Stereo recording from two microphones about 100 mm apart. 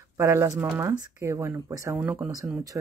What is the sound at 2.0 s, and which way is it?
Speech, 15° right (ahead or behind).